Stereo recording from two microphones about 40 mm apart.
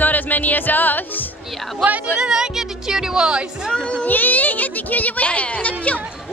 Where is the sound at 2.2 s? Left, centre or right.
Centre.